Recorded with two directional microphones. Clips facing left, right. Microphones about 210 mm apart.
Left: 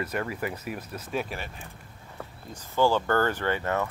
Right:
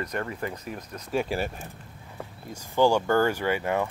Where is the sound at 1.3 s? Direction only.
40° right (ahead or behind).